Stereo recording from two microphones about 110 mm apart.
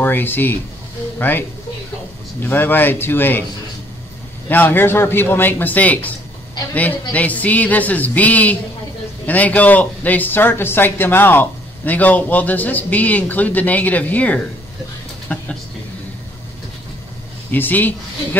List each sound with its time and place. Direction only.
0.0 s speech: 20° left (ahead or behind)
2.4 s a man's voice: 20° left (ahead or behind)
4.5 s speech: 20° left (ahead or behind)
17.5 s speech: 15° left (ahead or behind)